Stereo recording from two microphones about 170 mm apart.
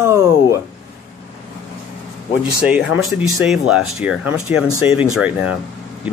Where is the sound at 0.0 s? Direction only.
15° right (ahead or behind).